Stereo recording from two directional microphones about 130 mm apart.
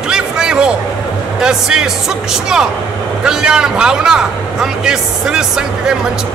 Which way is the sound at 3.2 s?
5° right (ahead or behind).